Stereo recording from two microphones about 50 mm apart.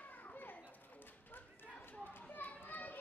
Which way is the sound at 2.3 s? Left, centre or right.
Left.